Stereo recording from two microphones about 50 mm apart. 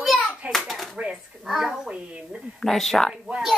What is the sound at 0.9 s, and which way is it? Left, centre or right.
Speech, centre.